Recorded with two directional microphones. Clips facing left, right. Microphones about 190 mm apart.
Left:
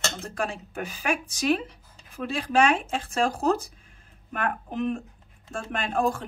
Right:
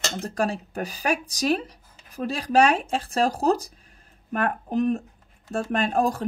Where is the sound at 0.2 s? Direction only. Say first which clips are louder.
Right 5 dB; 40° right (ahead or behind).